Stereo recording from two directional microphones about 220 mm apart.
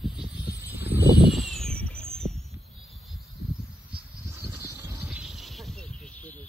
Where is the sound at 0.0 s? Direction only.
5° right (ahead or behind).